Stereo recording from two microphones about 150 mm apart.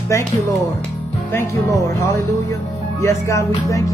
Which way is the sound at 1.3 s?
20° left (ahead or behind).